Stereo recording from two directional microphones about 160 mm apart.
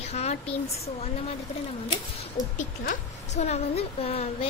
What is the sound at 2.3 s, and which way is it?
A woman's voice, 55° left (ahead or behind).